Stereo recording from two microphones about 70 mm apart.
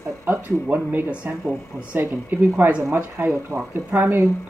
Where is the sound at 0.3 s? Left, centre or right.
Right.